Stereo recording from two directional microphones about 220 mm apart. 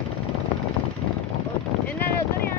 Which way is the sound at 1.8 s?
10° left (ahead or behind).